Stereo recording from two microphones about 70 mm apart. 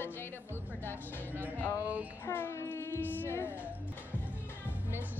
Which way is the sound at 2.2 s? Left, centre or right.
Left.